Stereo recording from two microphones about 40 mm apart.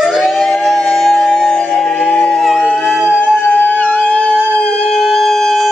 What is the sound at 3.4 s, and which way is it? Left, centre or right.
Howl, left.